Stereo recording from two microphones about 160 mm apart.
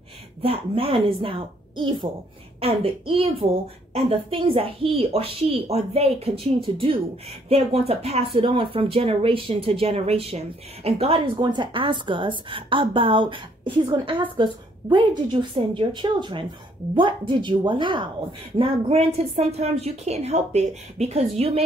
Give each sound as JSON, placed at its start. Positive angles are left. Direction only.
{"t": 0.4, "sound": "a woman's voice", "side_deg": -35}